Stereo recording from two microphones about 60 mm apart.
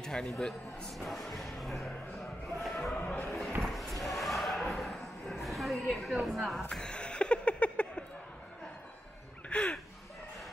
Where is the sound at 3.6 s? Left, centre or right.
Centre.